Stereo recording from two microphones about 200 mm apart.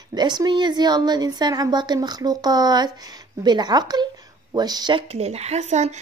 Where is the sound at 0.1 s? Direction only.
20° right (ahead or behind).